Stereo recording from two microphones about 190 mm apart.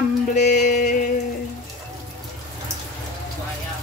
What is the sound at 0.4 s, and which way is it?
Music, 40° left (ahead or behind).